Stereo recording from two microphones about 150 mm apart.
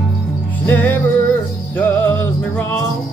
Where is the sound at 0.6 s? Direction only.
10° left (ahead or behind).